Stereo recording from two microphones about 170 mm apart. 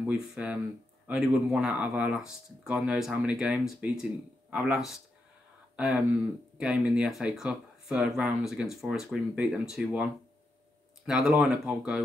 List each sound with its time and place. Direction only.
0.0 s speech: 5° right (ahead or behind)
11.1 s speech: 5° right (ahead or behind)